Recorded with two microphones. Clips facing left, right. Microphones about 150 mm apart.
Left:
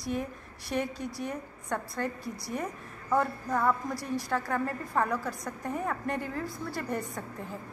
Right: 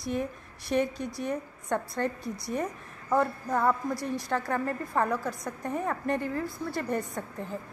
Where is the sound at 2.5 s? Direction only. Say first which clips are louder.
Right 4 dB; 15° left (ahead or behind).